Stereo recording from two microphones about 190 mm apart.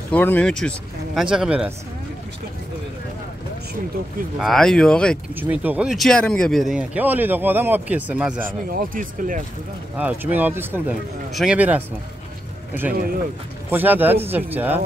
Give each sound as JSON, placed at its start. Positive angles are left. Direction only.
{"t": 0.1, "sound": "speech", "side_deg": 10}
{"t": 4.4, "sound": "speech", "side_deg": 0}
{"t": 5.3, "sound": "speech", "side_deg": -10}
{"t": 8.5, "sound": "speech", "side_deg": -45}
{"t": 9.9, "sound": "speech", "side_deg": -10}
{"t": 13.7, "sound": "speech", "side_deg": -10}